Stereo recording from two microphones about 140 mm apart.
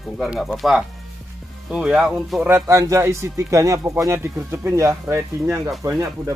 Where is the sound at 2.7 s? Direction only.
20° right (ahead or behind).